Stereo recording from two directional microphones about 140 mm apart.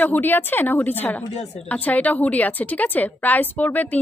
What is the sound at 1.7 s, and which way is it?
A woman's voice, 10° left (ahead or behind).